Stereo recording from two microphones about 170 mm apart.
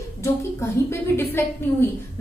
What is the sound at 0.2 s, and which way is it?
A woman's voice, 15° left (ahead or behind).